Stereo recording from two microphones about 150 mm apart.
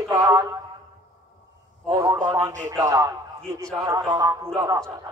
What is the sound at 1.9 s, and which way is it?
A man's voice, 15° right (ahead or behind).